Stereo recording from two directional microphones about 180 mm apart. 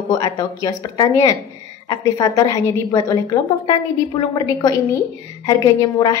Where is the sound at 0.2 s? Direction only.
20° left (ahead or behind).